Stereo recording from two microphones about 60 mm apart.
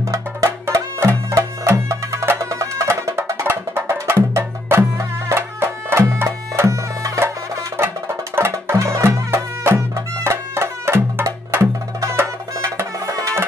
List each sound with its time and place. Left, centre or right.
0.1 s music: right
2.9 s music: right
3.4 s music: right
8.8 s music: right
12.0 s music: right